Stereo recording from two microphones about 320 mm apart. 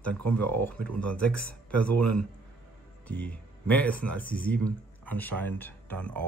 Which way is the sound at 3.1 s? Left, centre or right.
Centre.